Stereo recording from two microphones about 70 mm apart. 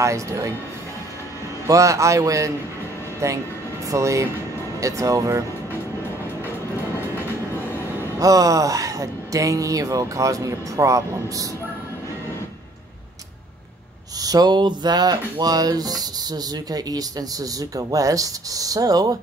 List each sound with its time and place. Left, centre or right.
0.0 s speech: right
1.7 s speech: right
8.2 s speech: right
14.2 s speech: right